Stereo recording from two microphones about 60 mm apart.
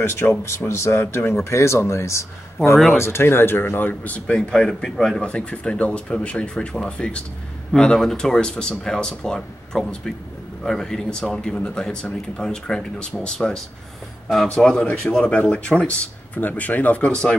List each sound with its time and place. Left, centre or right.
0.0 s speech: left
4.3 s speech: centre
5.2 s speech: centre
14.6 s speech: centre
15.1 s speech: centre
16.3 s speech: left
17.1 s speech: centre